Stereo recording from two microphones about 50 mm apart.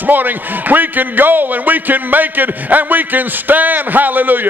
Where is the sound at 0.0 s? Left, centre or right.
Right.